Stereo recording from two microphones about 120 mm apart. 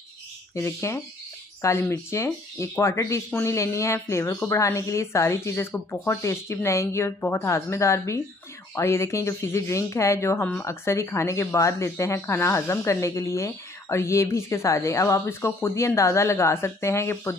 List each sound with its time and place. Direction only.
0.6 s speech: 25° left (ahead or behind)